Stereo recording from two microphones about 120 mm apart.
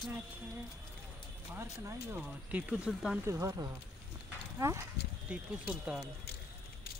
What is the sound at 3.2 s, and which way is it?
Speech, 25° right (ahead or behind).